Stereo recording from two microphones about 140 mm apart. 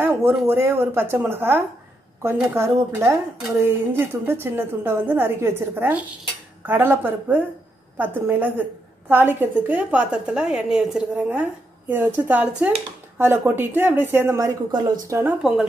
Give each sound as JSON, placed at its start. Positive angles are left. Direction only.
{"t": 0.0, "sound": "a woman's voice", "side_deg": -15}
{"t": 14.7, "sound": "speech", "side_deg": -30}
{"t": 15.0, "sound": "speech", "side_deg": -20}